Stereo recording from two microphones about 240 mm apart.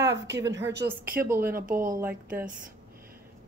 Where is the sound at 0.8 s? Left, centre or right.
Centre.